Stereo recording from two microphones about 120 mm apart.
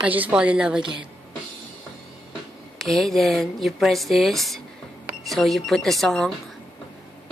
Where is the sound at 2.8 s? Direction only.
Centre (ahead or behind).